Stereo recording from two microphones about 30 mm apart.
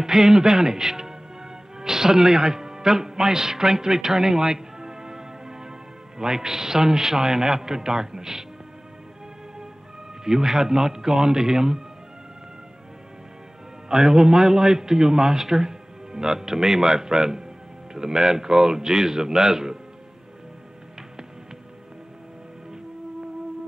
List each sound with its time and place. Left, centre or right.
0.0 s a man's voice: centre
10.2 s a man's voice: centre
13.8 s a man's voice: right